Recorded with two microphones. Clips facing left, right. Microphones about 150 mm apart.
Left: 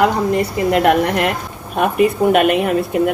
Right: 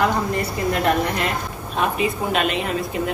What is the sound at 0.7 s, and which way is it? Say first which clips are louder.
A woman's voice: left 7 dB; 70° left (ahead or behind).